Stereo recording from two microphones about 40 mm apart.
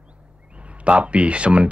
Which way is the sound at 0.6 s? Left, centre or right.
Right.